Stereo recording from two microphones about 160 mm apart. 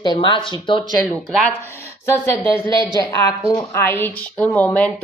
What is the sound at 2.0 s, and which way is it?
Speech, 15° left (ahead or behind).